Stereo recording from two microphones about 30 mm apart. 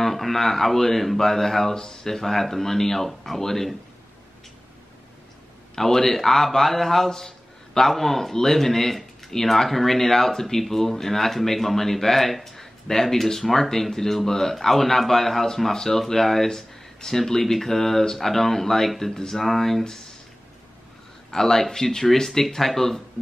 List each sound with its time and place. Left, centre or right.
0.0 s speech: centre
5.8 s speech: centre
7.1 s a sound: centre
7.9 s speech: centre
21.3 s speech: centre